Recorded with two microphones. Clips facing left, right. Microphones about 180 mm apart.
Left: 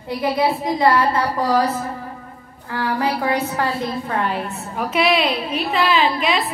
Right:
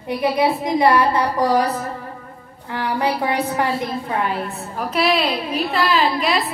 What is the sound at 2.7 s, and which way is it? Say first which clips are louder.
A woman's voice: even; 20° right (ahead or behind).